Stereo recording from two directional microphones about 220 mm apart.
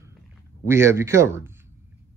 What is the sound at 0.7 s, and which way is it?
Speech, 10° right (ahead or behind).